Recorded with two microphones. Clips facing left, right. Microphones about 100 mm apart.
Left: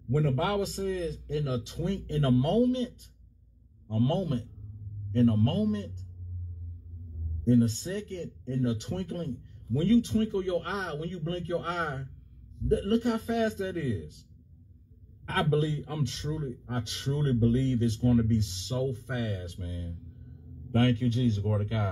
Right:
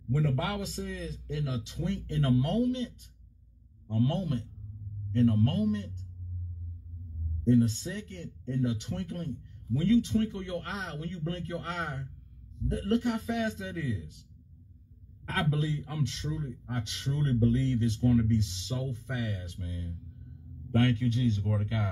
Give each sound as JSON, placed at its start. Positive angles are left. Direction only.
{"t": 0.1, "sound": "a man's voice", "side_deg": 45}
{"t": 3.9, "sound": "a man's voice", "side_deg": 45}
{"t": 7.4, "sound": "a man's voice", "side_deg": 40}
{"t": 15.2, "sound": "a man's voice", "side_deg": 45}